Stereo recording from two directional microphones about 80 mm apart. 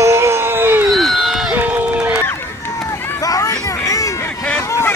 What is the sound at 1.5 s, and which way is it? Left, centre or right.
Run, right.